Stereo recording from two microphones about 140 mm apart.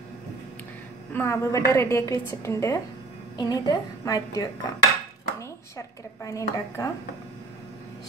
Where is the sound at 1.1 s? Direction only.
20° left (ahead or behind).